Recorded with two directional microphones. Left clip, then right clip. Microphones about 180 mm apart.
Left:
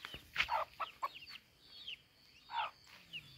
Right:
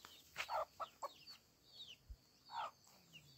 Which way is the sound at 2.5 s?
75° right (ahead or behind).